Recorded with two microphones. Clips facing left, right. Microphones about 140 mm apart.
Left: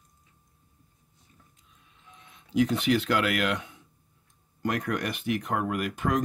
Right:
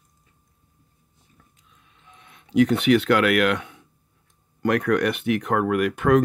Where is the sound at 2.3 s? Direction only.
65° right (ahead or behind).